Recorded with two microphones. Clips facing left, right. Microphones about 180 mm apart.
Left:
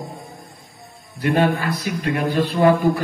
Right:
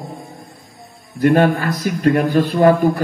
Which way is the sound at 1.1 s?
50° right (ahead or behind).